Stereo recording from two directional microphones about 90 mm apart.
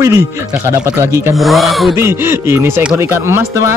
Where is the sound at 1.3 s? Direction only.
Centre (ahead or behind).